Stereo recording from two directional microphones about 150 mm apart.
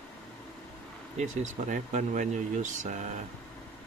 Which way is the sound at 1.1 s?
55° right (ahead or behind).